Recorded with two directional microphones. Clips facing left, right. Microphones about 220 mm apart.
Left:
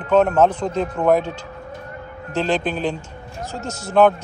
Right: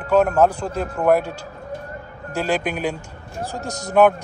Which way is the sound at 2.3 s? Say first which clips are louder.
Left 1 dB; 10° right (ahead or behind).